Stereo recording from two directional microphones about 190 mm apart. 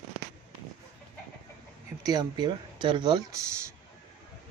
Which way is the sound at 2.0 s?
20° right (ahead or behind).